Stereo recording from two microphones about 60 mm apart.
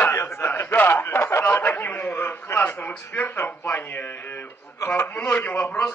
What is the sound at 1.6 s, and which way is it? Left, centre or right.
Speech, left.